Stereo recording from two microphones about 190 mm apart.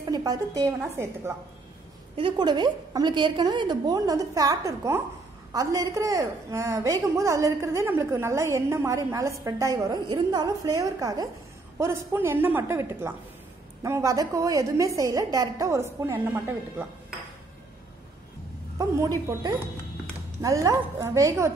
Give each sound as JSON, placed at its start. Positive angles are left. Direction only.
{"t": 0.1, "sound": "a woman's voice", "side_deg": -20}
{"t": 2.1, "sound": "a woman's voice", "side_deg": -25}
{"t": 18.8, "sound": "a woman's voice", "side_deg": -15}